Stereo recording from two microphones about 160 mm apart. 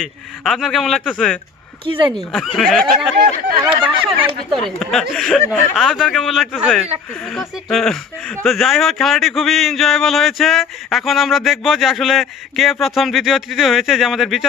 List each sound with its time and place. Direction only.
0.0 s speech: centre (ahead or behind)
1.9 s speech: 30° right (ahead or behind)
2.1 s speech: 5° left (ahead or behind)